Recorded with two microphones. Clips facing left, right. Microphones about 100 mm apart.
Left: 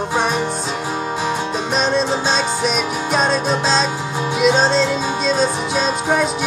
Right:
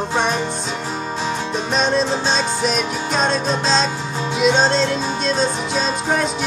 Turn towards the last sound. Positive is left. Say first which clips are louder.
# left 2 dB
turn(degrees=0)  # may be behind; listen again after turning